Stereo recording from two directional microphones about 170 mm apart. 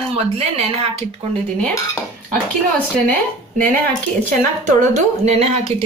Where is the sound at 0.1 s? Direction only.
35° right (ahead or behind).